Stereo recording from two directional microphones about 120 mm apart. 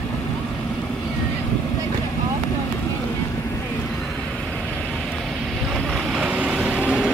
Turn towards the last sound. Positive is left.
turn(degrees=-5)  # may be behind; listen again after turning